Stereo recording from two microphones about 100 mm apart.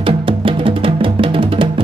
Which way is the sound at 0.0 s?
65° right (ahead or behind).